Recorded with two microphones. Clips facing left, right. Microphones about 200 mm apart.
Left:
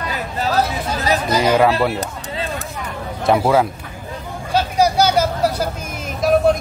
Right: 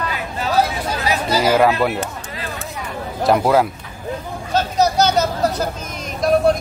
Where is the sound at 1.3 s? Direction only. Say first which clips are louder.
Even; 5° right (ahead or behind).